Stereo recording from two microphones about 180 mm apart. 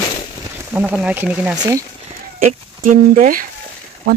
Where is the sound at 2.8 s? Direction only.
50° right (ahead or behind).